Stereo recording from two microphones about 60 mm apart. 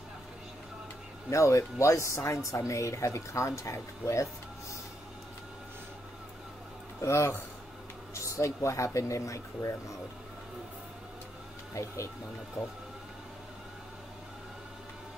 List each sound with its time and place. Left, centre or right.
1.3 s speech: left
7.0 s speech: left
8.1 s speech: left
11.7 s speech: left